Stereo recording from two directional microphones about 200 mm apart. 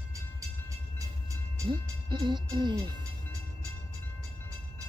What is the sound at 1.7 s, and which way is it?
Music, 20° right (ahead or behind).